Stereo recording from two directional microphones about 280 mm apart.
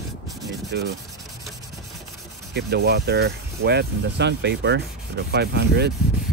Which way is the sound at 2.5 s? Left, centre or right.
Right.